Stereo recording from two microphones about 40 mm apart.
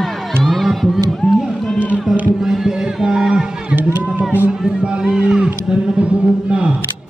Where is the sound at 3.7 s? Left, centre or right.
Right.